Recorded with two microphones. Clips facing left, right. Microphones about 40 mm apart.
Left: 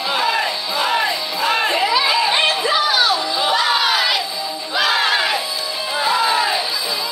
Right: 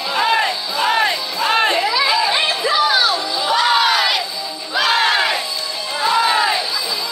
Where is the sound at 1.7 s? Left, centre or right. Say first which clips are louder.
Even; centre.